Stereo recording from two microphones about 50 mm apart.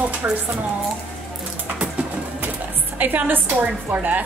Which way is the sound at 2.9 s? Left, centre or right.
Right.